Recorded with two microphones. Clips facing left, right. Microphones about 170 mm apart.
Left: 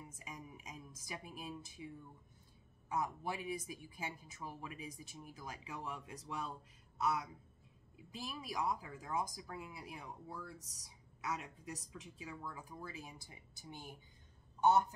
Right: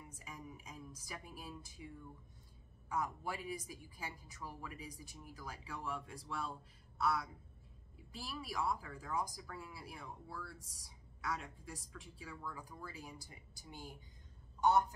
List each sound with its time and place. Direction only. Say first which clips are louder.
0.2 s speech: right 2 dB; 20° left (ahead or behind)
2.9 s a woman's voice: left 1 dB; 20° left (ahead or behind)
8.1 s a woman's voice: left 1 dB; 15° left (ahead or behind)